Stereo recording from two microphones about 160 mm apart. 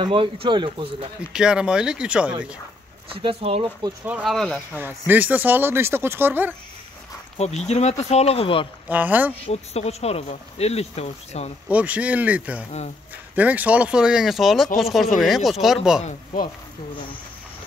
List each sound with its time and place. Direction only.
0.0 s speech: 35° right (ahead or behind)
1.3 s speech: 5° right (ahead or behind)
3.1 s speech: 35° right (ahead or behind)
4.0 s speech: 10° right (ahead or behind)
4.7 s speech: 10° right (ahead or behind)
7.3 s speech: 45° left (ahead or behind)
8.8 s speech: 10° right (ahead or behind)
9.5 s speech: 40° left (ahead or behind)
11.7 s speech: 10° right (ahead or behind)